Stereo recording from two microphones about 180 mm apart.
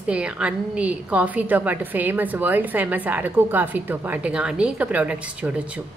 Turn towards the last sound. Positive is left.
turn(degrees=-5)  # may be behind; listen again after turning